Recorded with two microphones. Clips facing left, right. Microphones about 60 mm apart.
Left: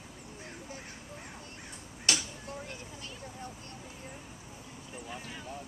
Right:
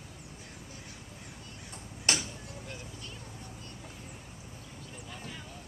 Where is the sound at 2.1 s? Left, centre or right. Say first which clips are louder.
Right 1 dB; right.